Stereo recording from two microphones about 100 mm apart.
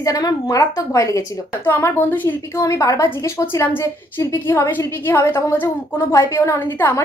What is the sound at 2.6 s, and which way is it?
Speech, 35° left (ahead or behind).